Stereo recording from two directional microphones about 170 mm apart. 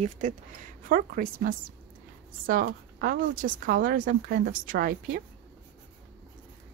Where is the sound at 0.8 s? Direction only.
55° right (ahead or behind).